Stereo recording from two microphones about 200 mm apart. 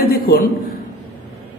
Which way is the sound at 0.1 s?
50° left (ahead or behind).